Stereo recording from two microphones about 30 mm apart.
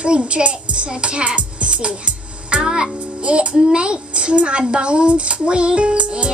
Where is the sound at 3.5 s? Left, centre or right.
Right.